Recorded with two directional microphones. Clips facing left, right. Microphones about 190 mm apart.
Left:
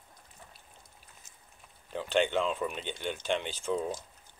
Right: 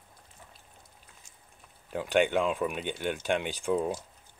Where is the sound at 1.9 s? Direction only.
10° right (ahead or behind).